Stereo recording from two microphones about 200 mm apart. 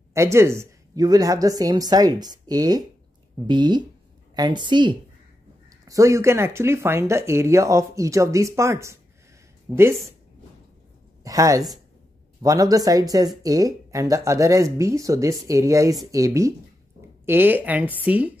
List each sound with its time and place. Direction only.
0.1 s speech: 15° right (ahead or behind)
11.2 s speech: 15° right (ahead or behind)